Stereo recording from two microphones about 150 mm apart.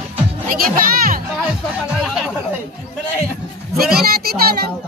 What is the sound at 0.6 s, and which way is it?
Music, 70° right (ahead or behind).